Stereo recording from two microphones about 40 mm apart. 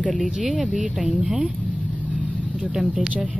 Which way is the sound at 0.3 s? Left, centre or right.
Centre.